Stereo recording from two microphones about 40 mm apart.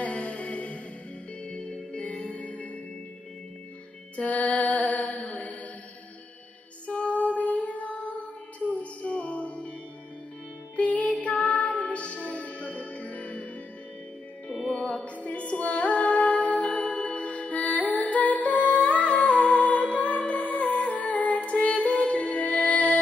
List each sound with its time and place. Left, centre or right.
0.0 s mantra: left
1.4 s music: left
4.2 s music: left
6.9 s music: left
10.8 s music: left
14.7 s music: left
15.1 s music: left